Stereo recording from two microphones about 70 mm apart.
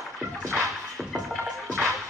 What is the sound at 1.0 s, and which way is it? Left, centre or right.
Music, centre.